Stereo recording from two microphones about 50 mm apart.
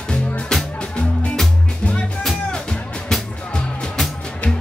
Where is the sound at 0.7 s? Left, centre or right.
Left.